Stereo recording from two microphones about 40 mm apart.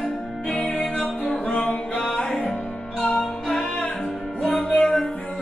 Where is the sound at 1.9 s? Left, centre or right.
Centre.